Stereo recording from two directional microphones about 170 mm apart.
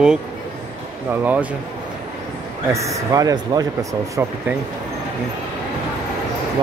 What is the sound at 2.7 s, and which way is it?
Speech, 20° right (ahead or behind).